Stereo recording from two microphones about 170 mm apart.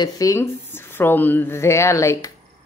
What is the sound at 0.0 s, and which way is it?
Speech, 20° left (ahead or behind).